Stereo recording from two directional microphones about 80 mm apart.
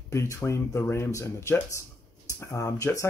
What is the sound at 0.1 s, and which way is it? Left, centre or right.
Speech, left.